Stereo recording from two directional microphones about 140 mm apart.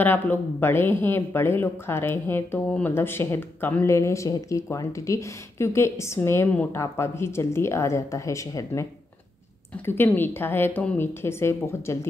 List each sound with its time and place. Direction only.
0.0 s speech: 15° left (ahead or behind)
9.8 s a woman's voice: 15° left (ahead or behind)